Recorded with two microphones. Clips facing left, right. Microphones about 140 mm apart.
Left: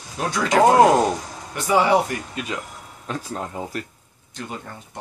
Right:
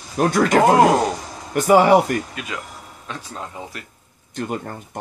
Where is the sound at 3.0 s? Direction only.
40° left (ahead or behind).